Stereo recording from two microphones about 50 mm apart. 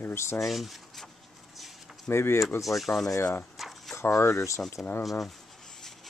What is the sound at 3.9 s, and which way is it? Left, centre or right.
Speech, left.